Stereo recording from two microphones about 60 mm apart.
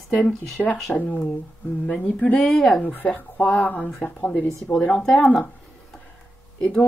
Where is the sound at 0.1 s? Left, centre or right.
Centre.